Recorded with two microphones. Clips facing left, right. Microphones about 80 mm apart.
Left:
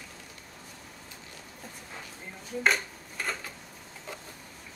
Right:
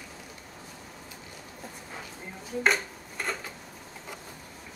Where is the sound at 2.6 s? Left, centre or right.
Centre.